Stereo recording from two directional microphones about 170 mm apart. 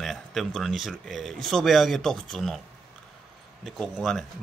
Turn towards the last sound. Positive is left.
turn(degrees=0)  # may be behind; listen again after turning